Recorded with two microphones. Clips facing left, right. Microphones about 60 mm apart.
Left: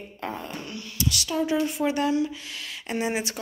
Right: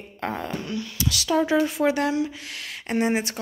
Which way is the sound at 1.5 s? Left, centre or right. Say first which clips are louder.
Right 3 dB; right.